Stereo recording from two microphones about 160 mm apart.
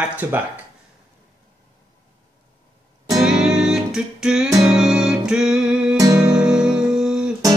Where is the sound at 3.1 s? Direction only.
5° right (ahead or behind).